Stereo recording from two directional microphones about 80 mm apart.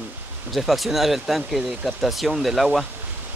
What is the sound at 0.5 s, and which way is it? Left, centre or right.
Speech, centre.